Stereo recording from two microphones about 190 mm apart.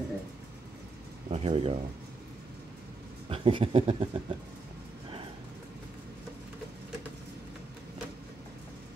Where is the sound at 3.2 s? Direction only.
30° right (ahead or behind).